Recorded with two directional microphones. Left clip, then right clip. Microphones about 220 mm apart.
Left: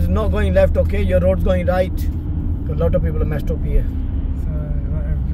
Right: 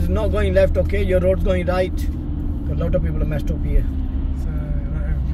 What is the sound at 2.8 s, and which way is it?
Speech, 15° left (ahead or behind).